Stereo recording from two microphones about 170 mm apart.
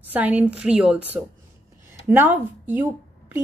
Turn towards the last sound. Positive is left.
turn(degrees=-10)  # may be behind; listen again after turning